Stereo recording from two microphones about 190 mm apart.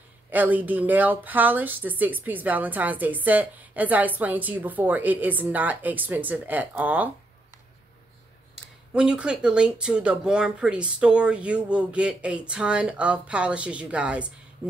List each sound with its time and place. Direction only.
0.3 s speech: 10° right (ahead or behind)
8.9 s speech: 5° right (ahead or behind)